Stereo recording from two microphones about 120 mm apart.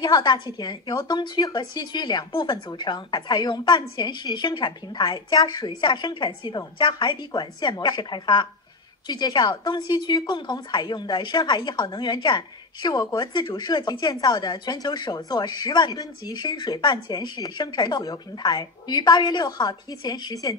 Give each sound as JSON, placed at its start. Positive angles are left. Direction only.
{"t": 0.0, "sound": "a woman's voice", "side_deg": 40}